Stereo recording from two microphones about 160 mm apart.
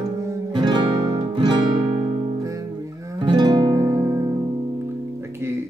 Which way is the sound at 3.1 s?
30° right (ahead or behind).